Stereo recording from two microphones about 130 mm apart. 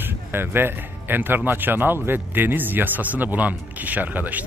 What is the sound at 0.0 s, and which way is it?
Speech, 15° right (ahead or behind).